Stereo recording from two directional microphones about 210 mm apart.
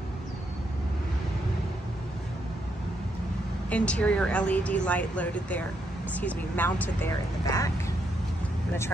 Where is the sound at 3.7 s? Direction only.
5° left (ahead or behind).